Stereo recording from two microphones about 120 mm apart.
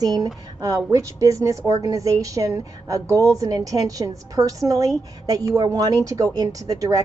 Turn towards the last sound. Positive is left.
turn(degrees=-30)  # may be behind; listen again after turning